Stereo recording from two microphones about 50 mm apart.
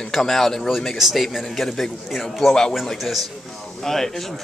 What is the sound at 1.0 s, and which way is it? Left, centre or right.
Speech, centre.